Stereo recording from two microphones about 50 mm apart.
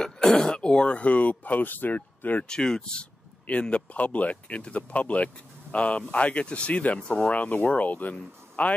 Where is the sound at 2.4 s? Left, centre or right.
Centre.